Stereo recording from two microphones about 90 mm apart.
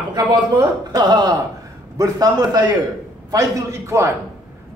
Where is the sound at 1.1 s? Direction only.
55° right (ahead or behind).